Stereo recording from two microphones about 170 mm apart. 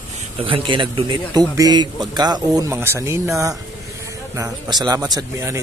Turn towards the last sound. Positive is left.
turn(degrees=-20)  # may be behind; listen again after turning